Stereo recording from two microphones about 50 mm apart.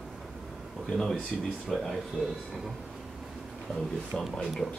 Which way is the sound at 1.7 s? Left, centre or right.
Centre.